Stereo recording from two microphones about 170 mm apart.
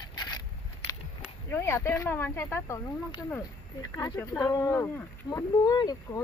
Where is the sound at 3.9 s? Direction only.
15° left (ahead or behind).